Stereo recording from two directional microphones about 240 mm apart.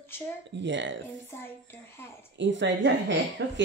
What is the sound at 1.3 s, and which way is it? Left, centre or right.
Speech, centre.